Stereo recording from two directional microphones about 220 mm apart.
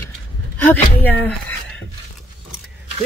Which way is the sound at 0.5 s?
10° left (ahead or behind).